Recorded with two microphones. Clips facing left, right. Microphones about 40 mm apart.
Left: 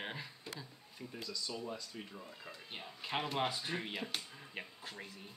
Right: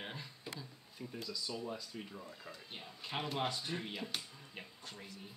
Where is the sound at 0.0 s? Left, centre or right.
Centre.